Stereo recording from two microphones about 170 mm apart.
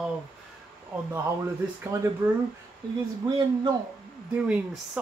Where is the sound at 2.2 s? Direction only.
15° right (ahead or behind).